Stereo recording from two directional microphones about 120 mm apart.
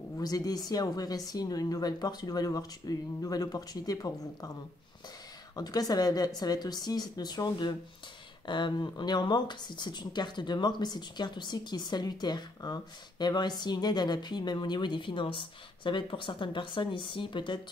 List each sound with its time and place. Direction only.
0.2 s speech: 30° left (ahead or behind)
5.6 s speech: 30° left (ahead or behind)